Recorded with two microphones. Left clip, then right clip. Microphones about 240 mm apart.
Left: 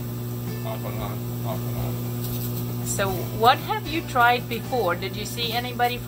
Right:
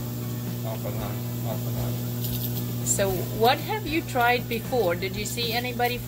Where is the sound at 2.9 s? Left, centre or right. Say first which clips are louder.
Even; centre.